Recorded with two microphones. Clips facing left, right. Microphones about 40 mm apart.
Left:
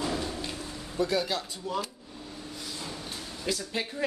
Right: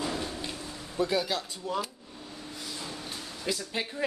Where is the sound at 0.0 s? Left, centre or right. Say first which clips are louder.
Left 1 dB; centre.